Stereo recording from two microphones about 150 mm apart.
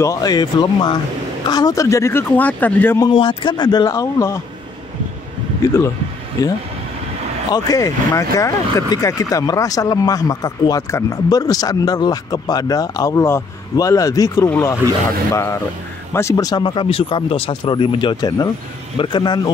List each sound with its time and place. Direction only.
0.0 s speech: 25° left (ahead or behind)
3.1 s speech: 35° left (ahead or behind)
5.6 s speech: 20° left (ahead or behind)